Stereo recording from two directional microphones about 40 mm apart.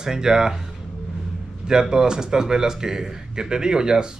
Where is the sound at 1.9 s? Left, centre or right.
Centre.